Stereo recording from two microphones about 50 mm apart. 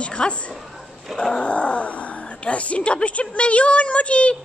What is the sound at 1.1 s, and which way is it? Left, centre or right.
Speech, centre.